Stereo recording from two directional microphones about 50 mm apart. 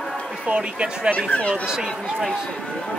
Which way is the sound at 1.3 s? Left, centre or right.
Left.